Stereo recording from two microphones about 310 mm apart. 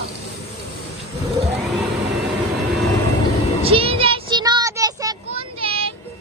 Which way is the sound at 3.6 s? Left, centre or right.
Centre.